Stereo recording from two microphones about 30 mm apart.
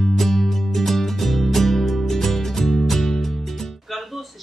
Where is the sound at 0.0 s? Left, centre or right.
Centre.